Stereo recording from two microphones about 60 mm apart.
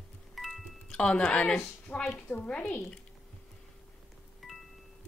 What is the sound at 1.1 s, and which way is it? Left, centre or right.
Speech, centre.